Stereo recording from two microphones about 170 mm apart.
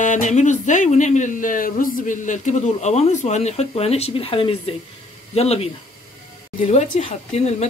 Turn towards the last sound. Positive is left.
turn(degrees=40)  # may be behind; listen again after turning